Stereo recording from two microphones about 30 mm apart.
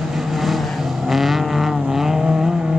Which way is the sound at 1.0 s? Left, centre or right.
Centre.